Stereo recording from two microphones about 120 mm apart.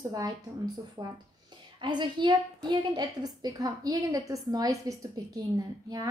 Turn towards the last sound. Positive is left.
turn(degrees=-30)  # may be behind; listen again after turning